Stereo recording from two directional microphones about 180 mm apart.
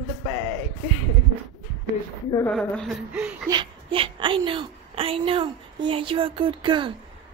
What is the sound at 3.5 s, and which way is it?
A woman's voice, 25° right (ahead or behind).